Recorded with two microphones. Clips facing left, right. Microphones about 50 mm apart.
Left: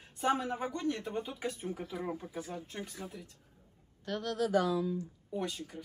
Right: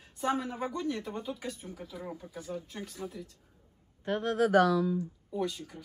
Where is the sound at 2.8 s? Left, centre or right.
Centre.